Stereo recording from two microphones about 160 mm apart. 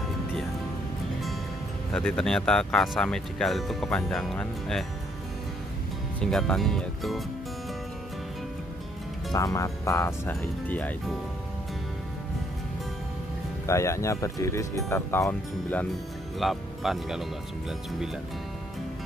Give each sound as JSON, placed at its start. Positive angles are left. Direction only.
{"t": 1.9, "sound": "speech", "side_deg": 5}
{"t": 6.3, "sound": "speech", "side_deg": 5}
{"t": 9.3, "sound": "speech", "side_deg": 20}
{"t": 13.7, "sound": "speech", "side_deg": 20}
{"t": 16.3, "sound": "speech", "side_deg": 0}